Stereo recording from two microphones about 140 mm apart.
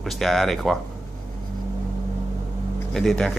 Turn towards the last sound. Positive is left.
turn(degrees=5)  # may be behind; listen again after turning